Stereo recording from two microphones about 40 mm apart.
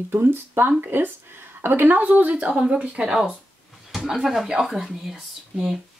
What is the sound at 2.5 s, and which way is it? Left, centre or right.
A woman's voice, right.